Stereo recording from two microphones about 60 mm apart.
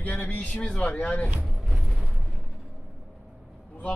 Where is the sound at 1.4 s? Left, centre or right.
Centre.